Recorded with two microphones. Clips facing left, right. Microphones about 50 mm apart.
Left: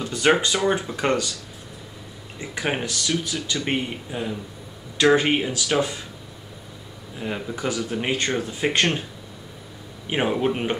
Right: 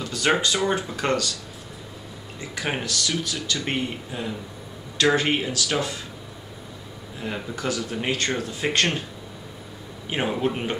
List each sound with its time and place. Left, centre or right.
0.0 s a sound: left
0.3 s speech: centre
2.4 s speech: centre
7.2 s speech: centre
10.0 s speech: centre